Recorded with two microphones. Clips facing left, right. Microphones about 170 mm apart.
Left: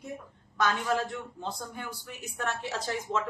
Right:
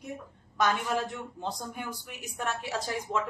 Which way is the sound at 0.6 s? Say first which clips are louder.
Even; 15° right (ahead or behind).